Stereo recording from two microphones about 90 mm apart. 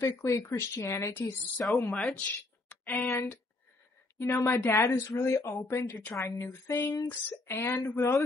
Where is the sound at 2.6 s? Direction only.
10° left (ahead or behind).